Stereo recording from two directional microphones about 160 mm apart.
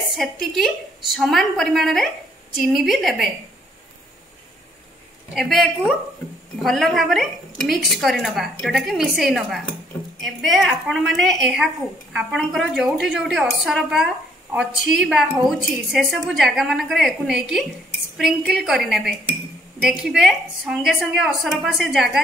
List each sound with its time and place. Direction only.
0.1 s a woman's voice: centre (ahead or behind)
5.3 s a woman's voice: centre (ahead or behind)